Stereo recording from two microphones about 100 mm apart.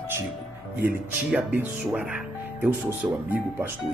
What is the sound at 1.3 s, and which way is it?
Speech, 15° right (ahead or behind).